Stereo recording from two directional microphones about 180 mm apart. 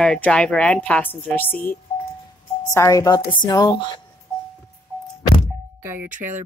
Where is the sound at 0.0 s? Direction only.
5° left (ahead or behind); by 4.0 s 20° left (ahead or behind).